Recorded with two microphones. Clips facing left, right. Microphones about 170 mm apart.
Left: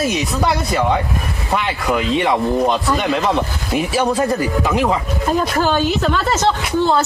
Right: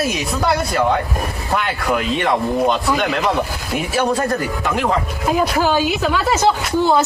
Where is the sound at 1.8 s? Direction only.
Centre (ahead or behind).